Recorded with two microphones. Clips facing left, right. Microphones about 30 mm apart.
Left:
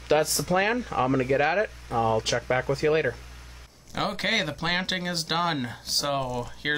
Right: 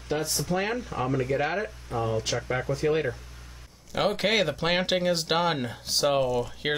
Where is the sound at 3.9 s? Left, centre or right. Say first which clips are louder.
Right 2 dB; centre.